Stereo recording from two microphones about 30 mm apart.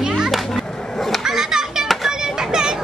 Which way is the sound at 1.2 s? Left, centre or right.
Right.